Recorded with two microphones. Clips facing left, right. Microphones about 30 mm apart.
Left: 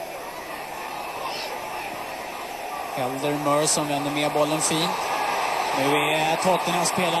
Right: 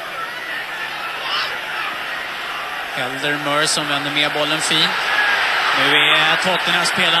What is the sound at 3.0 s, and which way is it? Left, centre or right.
Speech, right.